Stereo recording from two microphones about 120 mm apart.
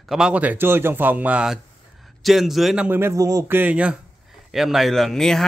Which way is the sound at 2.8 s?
20° right (ahead or behind).